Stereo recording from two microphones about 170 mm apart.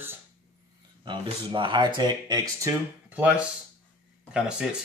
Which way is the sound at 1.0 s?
30° right (ahead or behind).